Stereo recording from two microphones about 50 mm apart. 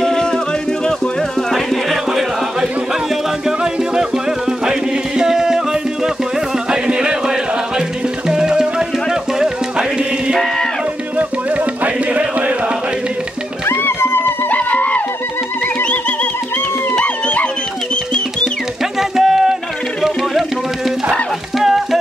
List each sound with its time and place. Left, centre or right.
0.0 s music: centre
1.5 s music: centre
3.4 s music: centre
11.1 s music: right
13.7 s music: left
14.5 s music: left
18.9 s music: centre